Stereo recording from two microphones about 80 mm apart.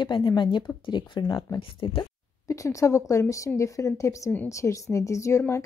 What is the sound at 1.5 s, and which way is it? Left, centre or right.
Speech, left.